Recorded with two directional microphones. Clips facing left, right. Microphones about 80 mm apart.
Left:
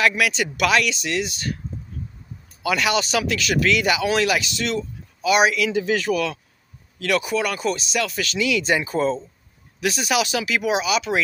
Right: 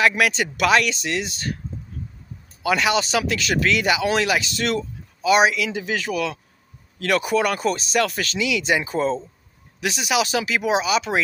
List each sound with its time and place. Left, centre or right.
0.1 s speech: right
2.6 s speech: right
4.6 s speech: right
5.2 s speech: right
7.0 s speech: right
8.4 s speech: centre
10.2 s speech: right